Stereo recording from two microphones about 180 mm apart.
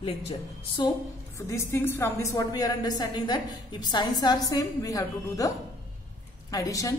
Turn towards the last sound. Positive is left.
turn(degrees=20)  # may be behind; listen again after turning